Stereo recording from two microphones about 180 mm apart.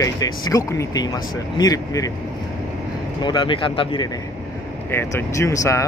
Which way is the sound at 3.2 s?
25° left (ahead or behind).